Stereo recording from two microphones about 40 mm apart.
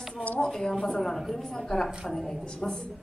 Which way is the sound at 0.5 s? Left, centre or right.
Centre.